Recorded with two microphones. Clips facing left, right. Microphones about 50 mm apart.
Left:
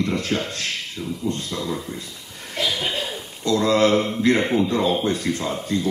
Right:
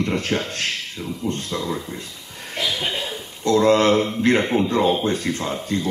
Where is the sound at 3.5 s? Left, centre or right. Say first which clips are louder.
Right 2 dB; right.